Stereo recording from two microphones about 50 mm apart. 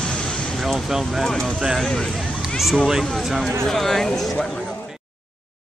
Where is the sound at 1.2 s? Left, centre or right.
Centre.